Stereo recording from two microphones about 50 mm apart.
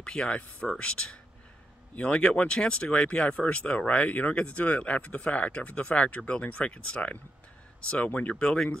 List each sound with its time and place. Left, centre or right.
0.0 s speech: left